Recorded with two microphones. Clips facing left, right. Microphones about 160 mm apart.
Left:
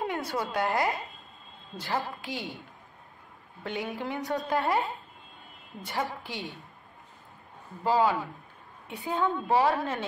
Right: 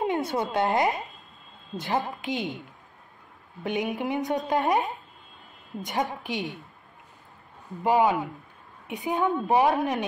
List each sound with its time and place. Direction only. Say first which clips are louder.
0.0 s a woman's voice: right 5 dB; 20° right (ahead or behind)
3.6 s a woman's voice: right 5 dB; 20° right (ahead or behind)
7.8 s a woman's voice: right 3 dB; 20° right (ahead or behind)